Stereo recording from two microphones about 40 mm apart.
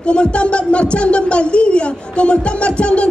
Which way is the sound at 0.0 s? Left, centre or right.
Left.